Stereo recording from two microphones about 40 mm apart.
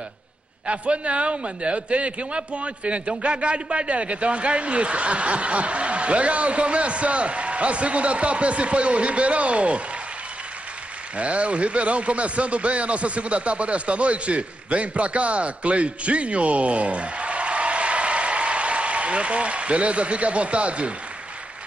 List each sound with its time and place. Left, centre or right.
0.7 s a man's voice: right
11.1 s speech: right